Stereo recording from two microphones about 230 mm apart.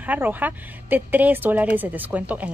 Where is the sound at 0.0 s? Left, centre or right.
Centre.